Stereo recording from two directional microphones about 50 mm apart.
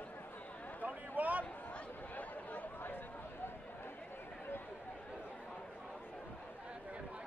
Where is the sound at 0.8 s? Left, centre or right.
Right.